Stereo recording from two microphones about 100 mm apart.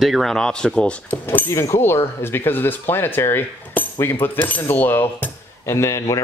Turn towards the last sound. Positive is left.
turn(degrees=30)  # may be behind; listen again after turning